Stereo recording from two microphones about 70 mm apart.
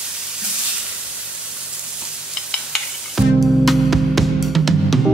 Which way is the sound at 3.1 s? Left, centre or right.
Centre.